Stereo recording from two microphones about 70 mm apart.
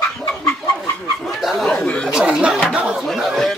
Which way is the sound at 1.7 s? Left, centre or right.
Centre.